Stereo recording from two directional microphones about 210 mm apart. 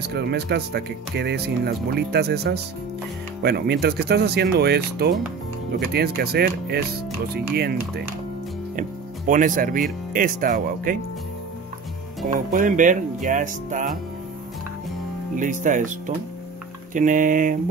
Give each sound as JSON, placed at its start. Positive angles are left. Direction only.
{"t": 0.1, "sound": "speech", "side_deg": -50}
{"t": 8.7, "sound": "speech", "side_deg": -40}
{"t": 12.3, "sound": "speech", "side_deg": -40}
{"t": 15.3, "sound": "speech", "side_deg": -40}
{"t": 16.9, "sound": "speech", "side_deg": -40}